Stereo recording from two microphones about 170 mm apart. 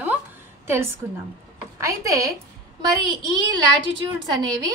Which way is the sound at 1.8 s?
20° right (ahead or behind).